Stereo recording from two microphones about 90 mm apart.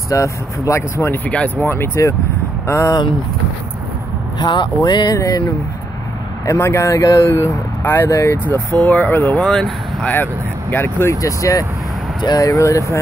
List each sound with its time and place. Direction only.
0.1 s speech: 35° left (ahead or behind)
1.3 s speech: 15° left (ahead or behind)
1.7 s speech: 30° left (ahead or behind)
4.4 s speech: 55° left (ahead or behind)
5.1 s speech: 40° left (ahead or behind)
6.4 s speech: 30° left (ahead or behind)
8.7 s speech: 15° left (ahead or behind)
9.4 s speech: 5° left (ahead or behind)
10.0 s speech: 20° left (ahead or behind)
11.1 s speech: 40° left (ahead or behind)